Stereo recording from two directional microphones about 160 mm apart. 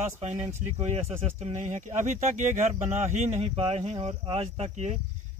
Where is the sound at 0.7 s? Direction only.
40° right (ahead or behind).